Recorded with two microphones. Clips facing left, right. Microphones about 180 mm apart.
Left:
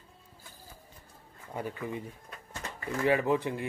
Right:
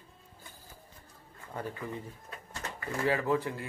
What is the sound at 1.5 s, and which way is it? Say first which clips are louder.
A man's voice: left 2 dB; 15° left (ahead or behind).